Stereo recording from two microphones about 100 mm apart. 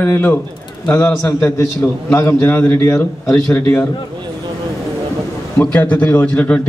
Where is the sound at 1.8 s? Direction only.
30° left (ahead or behind).